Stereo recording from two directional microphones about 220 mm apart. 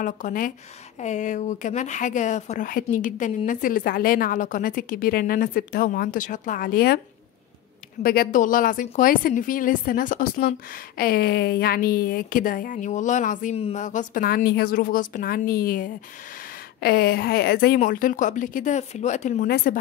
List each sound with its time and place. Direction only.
0.0 s speech: 40° left (ahead or behind)
8.0 s speech: 40° left (ahead or behind)